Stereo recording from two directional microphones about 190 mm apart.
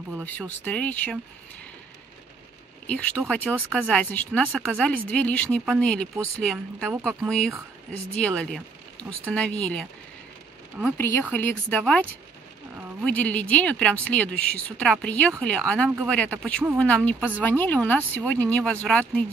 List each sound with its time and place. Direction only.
0.2 s speech: 10° left (ahead or behind)
2.9 s speech: 5° left (ahead or behind)
11.0 s speech: 10° left (ahead or behind)
13.0 s speech: 5° left (ahead or behind)